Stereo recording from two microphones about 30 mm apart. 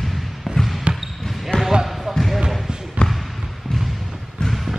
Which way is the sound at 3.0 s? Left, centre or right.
Left.